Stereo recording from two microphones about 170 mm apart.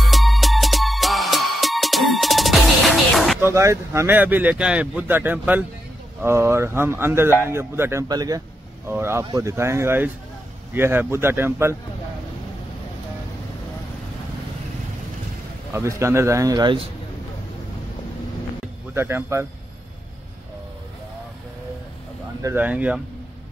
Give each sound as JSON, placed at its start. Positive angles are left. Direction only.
{"t": 0.0, "sound": "music", "side_deg": 0}
{"t": 3.3, "sound": "speech", "side_deg": -15}
{"t": 15.7, "sound": "a man's voice", "side_deg": -15}
{"t": 18.9, "sound": "speech", "side_deg": -15}
{"t": 22.4, "sound": "speech", "side_deg": -15}